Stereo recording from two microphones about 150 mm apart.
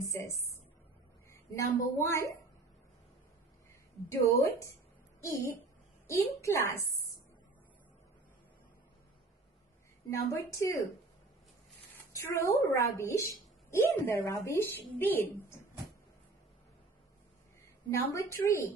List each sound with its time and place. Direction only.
0.0 s a woman's voice: 20° left (ahead or behind)
4.1 s a woman's voice: 20° left (ahead or behind)
10.0 s a woman's voice: 20° left (ahead or behind)
12.1 s a woman's voice: 20° left (ahead or behind)
17.9 s a woman's voice: 20° left (ahead or behind)